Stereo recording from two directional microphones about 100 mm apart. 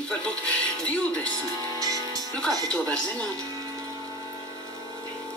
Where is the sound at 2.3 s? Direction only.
5° left (ahead or behind).